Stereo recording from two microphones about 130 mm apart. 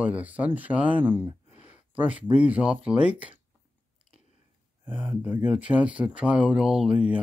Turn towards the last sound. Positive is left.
turn(degrees=-10)  # may be behind; listen again after turning